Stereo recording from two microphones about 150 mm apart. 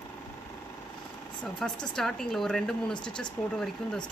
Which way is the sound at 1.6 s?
5° left (ahead or behind).